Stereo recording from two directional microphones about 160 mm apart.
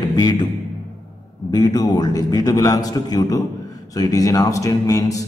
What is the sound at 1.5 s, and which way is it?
A man's voice, 25° left (ahead or behind).